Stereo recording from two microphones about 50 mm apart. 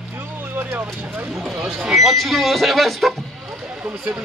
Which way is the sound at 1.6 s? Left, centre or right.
Centre.